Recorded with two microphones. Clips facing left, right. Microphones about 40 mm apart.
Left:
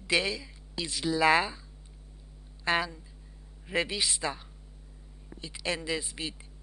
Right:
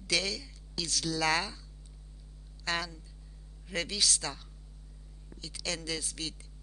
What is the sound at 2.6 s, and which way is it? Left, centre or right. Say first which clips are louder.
Speech: left 6 dB; left.